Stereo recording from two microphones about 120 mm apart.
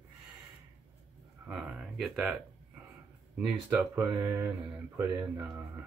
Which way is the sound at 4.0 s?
30° right (ahead or behind).